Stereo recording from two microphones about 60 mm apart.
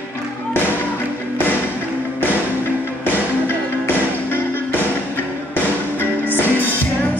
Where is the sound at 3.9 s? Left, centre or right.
Left.